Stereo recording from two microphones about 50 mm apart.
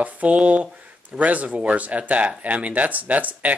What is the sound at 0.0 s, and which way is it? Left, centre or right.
Speech, right.